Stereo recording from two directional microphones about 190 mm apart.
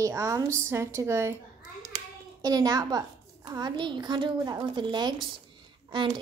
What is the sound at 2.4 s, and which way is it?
A woman's voice, 20° right (ahead or behind).